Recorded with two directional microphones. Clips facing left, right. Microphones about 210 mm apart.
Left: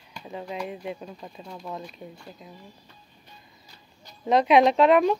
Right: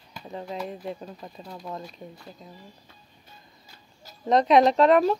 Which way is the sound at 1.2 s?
Centre (ahead or behind).